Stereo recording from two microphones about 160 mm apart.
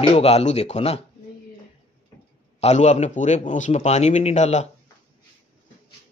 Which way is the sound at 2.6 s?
45° left (ahead or behind).